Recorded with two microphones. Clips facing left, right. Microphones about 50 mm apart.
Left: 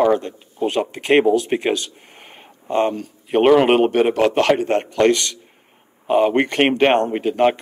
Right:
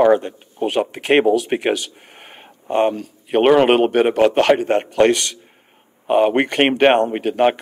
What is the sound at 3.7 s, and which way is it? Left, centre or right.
A man's voice, right.